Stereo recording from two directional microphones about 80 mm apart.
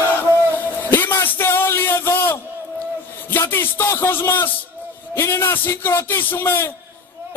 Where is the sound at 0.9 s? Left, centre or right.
Left.